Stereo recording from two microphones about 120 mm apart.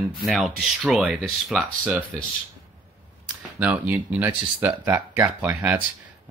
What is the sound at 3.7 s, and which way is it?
Speech, 15° right (ahead or behind).